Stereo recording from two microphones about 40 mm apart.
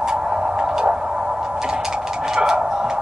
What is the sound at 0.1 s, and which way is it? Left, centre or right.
Tick-tock, centre.